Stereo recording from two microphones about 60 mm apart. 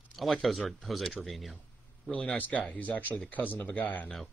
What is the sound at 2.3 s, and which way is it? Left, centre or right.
Speech, left.